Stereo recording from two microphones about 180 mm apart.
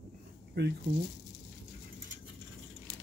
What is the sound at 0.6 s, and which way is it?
Speech, 75° right (ahead or behind).